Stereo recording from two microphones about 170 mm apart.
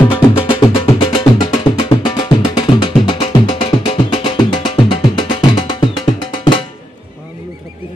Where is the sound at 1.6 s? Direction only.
30° left (ahead or behind).